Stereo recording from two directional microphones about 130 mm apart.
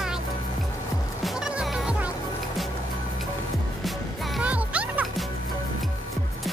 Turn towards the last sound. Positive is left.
turn(degrees=-10)  # may be behind; listen again after turning